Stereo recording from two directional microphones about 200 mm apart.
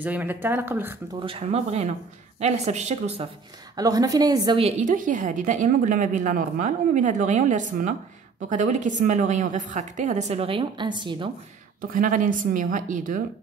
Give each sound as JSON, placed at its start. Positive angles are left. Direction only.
{"t": 0.0, "sound": "speech", "side_deg": -10}
{"t": 1.2, "sound": "a woman's voice", "side_deg": -30}
{"t": 3.7, "sound": "a woman's voice", "side_deg": -20}
{"t": 11.9, "sound": "a woman's voice", "side_deg": -40}